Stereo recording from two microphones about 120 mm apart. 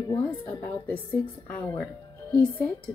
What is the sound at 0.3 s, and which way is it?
A woman's voice, 15° left (ahead or behind).